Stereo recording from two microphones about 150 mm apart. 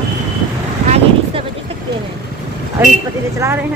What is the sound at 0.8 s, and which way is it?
Vehicle, 40° right (ahead or behind).